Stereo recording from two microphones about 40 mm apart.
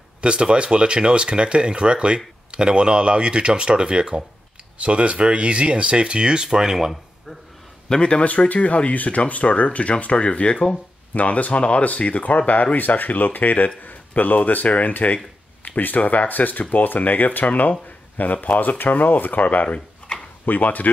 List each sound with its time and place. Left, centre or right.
0.2 s speech: right
7.9 s speech: left
8.3 s speech: left
11.1 s speech: left
20.4 s speech: left